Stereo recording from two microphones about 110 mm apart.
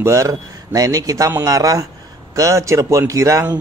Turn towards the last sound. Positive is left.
turn(degrees=-30)  # may be behind; listen again after turning